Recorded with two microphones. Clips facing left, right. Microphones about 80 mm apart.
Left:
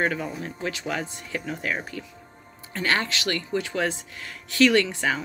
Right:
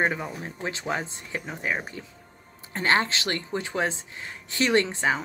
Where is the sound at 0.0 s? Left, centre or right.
Right.